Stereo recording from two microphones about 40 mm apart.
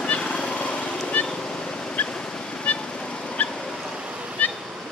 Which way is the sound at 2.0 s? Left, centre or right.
Left.